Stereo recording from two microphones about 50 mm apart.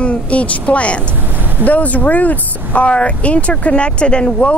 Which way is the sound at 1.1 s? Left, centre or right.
Right.